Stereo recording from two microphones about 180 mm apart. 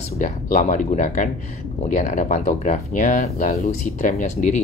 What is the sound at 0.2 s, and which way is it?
Speech, 45° left (ahead or behind).